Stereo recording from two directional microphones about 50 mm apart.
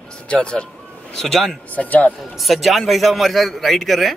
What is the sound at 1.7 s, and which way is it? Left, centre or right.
Speech, left.